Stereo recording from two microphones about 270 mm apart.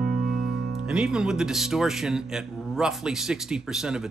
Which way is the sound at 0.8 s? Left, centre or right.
Centre.